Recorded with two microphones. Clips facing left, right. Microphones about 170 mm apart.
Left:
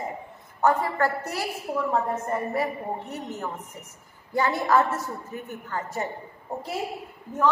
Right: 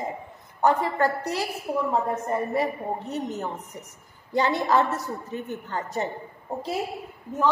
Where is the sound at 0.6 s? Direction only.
20° right (ahead or behind).